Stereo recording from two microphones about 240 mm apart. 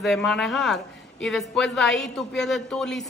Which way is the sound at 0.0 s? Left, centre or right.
Centre.